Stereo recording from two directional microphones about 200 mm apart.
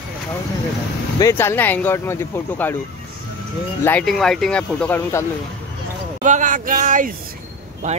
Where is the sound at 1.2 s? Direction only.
10° left (ahead or behind).